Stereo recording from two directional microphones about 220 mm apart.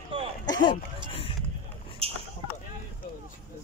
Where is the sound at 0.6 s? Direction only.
25° left (ahead or behind).